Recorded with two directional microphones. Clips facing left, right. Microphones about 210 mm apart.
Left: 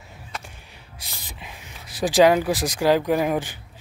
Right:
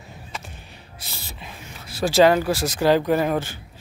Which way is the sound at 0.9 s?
15° left (ahead or behind).